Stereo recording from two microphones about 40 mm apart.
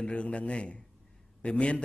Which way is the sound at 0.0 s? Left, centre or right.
Left.